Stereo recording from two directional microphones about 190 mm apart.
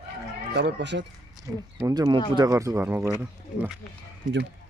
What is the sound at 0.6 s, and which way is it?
Speech, 65° right (ahead or behind).